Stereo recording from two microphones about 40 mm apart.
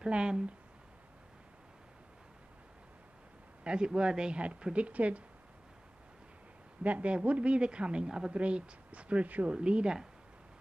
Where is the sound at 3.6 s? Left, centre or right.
Right.